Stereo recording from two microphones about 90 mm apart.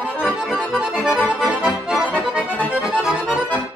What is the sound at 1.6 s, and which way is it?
Accordion, 15° right (ahead or behind).